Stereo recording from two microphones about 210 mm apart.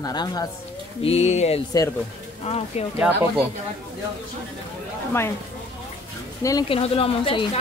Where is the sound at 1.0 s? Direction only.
30° left (ahead or behind).